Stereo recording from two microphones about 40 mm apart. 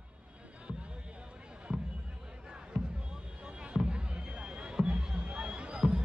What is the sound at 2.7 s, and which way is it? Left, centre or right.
Basketball bounce, centre.